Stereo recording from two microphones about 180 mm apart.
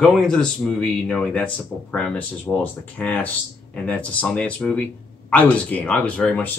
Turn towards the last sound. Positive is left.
turn(degrees=5)  # may be behind; listen again after turning